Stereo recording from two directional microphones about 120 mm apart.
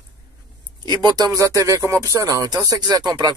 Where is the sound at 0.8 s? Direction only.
35° right (ahead or behind).